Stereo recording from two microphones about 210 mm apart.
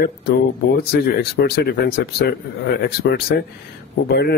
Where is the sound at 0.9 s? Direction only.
50° left (ahead or behind).